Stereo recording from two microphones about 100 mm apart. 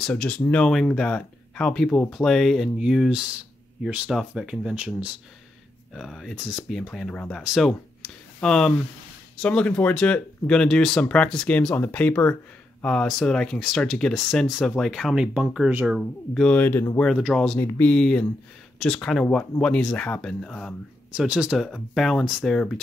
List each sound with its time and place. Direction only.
0.0 s speech: 10° left (ahead or behind); by 5.1 s 10° right (ahead or behind)
5.9 s speech: centre (ahead or behind)
16.4 s speech: 20° left (ahead or behind)
17.3 s speech: 5° left (ahead or behind)
17.6 s speech: 20° left (ahead or behind)
17.9 s speech: 10° left (ahead or behind)
21.1 s speech: 10° right (ahead or behind)
21.6 s speech: 5° left (ahead or behind)